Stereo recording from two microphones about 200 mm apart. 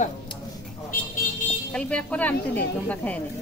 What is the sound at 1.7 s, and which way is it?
Speech, 5° left (ahead or behind).